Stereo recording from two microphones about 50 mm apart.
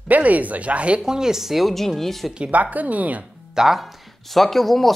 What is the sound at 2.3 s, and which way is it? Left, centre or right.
Speech, right.